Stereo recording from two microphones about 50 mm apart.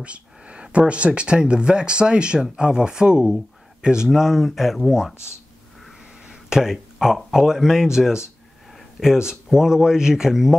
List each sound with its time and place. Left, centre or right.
0.0 s speech: right; by 5.1 s centre
6.2 s speech: centre